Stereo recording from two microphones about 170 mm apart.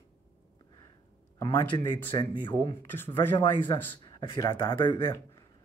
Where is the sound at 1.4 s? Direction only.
25° left (ahead or behind).